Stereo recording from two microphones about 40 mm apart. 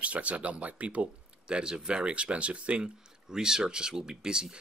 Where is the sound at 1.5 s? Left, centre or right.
Right.